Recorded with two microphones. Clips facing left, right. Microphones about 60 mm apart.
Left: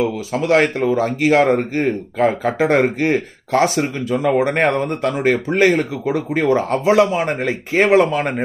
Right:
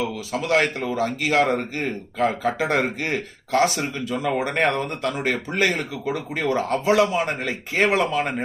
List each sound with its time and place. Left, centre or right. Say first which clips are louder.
0.3 s speech: left 5 dB; left